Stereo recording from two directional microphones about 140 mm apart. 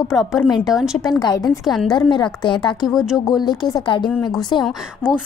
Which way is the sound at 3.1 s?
25° left (ahead or behind).